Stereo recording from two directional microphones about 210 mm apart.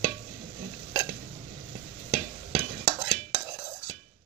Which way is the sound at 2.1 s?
35° right (ahead or behind).